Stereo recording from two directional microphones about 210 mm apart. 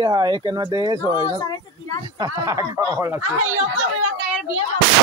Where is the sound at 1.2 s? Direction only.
20° left (ahead or behind).